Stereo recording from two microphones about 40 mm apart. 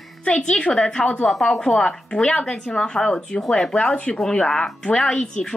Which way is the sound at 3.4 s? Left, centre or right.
Centre.